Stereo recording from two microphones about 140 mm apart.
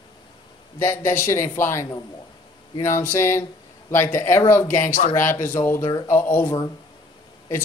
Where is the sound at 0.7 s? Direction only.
15° left (ahead or behind).